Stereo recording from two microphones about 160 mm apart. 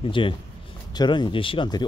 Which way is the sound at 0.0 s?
30° left (ahead or behind).